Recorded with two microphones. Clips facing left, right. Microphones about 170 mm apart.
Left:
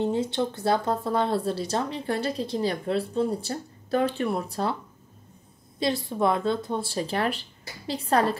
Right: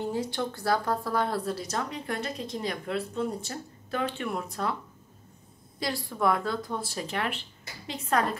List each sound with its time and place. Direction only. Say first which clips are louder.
0.0 s speech: left 5 dB; 25° left (ahead or behind)
5.8 s speech: left 5 dB; 20° left (ahead or behind)